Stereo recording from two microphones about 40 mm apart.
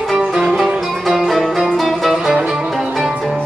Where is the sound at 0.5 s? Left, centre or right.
Centre.